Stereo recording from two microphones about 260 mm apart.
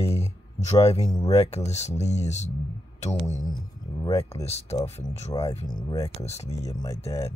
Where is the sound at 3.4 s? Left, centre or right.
Centre.